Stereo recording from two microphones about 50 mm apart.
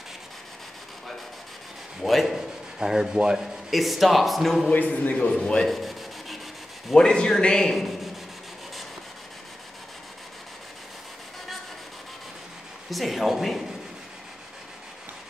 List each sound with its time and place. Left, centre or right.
2.0 s rub: centre
3.7 s speech: centre
4.7 s a man's voice: left
5.6 s rub: centre
6.9 s a man's voice: centre
7.7 s rub: centre
12.9 s speech: centre